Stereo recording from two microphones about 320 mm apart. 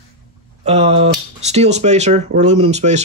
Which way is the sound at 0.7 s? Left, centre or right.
Centre.